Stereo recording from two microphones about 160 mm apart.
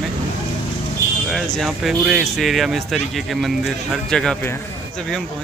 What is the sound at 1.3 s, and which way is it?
Speech, centre (ahead or behind).